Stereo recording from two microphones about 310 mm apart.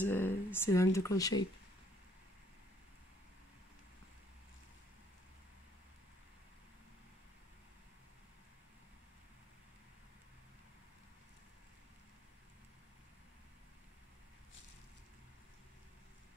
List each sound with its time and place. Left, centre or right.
0.0 s speech: centre